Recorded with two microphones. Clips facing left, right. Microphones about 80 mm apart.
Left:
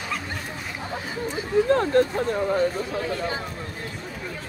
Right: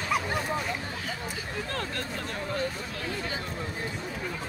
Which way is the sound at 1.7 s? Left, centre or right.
Left.